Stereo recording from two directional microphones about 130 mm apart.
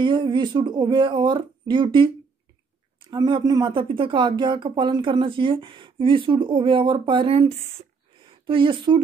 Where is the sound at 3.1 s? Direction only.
35° right (ahead or behind).